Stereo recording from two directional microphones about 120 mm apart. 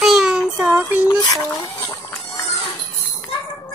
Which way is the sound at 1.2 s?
30° left (ahead or behind).